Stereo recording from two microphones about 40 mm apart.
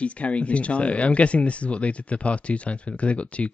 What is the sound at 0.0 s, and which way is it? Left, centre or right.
Speech, left.